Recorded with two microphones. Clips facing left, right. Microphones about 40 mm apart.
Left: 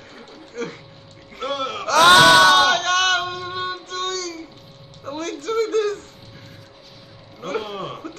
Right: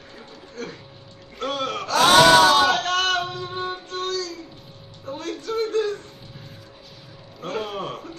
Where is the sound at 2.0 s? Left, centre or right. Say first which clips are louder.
Left 2 dB; left.